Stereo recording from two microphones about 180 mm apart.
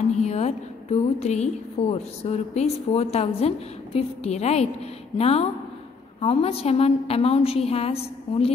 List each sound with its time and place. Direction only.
0.2 s a woman's voice: 40° left (ahead or behind)